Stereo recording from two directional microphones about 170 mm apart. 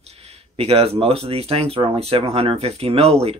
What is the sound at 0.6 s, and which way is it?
Speech, 35° right (ahead or behind).